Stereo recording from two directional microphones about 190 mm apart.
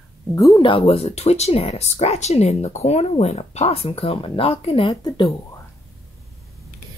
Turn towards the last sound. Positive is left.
turn(degrees=25)  # may be behind; listen again after turning